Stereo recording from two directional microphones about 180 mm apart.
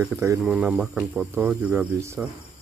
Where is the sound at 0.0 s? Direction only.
15° right (ahead or behind).